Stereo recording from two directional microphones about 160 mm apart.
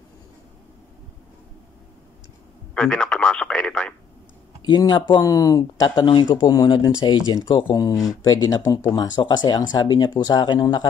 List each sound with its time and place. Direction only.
2.7 s speech: 5° left (ahead or behind)
4.6 s speech: 25° left (ahead or behind)